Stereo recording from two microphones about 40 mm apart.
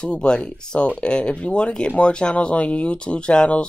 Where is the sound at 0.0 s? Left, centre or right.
Left.